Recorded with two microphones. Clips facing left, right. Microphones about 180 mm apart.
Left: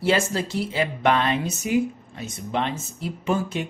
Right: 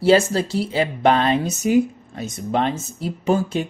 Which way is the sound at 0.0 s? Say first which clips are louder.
Right 7 dB; 35° right (ahead or behind).